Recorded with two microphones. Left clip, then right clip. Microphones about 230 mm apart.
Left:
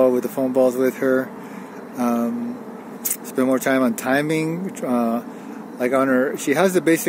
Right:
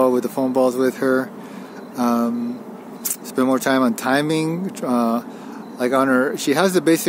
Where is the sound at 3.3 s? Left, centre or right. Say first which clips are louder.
Right 1 dB; centre.